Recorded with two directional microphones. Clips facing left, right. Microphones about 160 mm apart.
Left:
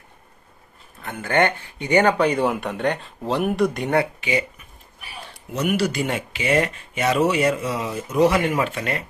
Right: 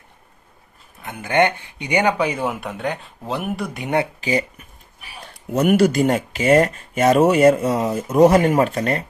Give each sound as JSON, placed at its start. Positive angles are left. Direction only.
{"t": 1.0, "sound": "speech", "side_deg": -15}
{"t": 3.8, "sound": "speech", "side_deg": -20}
{"t": 4.2, "sound": "speech", "side_deg": -40}
{"t": 5.5, "sound": "speech", "side_deg": -50}